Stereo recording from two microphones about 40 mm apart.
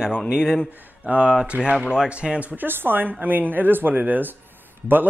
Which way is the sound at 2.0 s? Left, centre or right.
Right.